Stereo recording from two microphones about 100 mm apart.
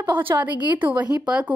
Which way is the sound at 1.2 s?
10° right (ahead or behind).